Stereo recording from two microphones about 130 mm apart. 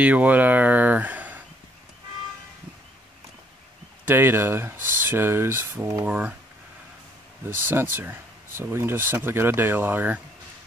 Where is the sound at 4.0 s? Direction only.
15° right (ahead or behind).